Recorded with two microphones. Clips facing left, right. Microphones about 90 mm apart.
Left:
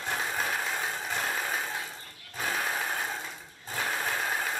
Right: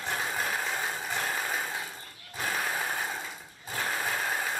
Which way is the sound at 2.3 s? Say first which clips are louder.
Even; centre (ahead or behind).